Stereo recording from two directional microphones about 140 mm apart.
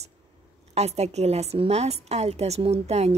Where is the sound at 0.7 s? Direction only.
50° right (ahead or behind).